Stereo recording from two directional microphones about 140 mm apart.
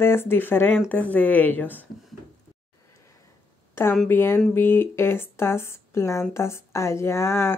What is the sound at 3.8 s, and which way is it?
Speech, 15° left (ahead or behind).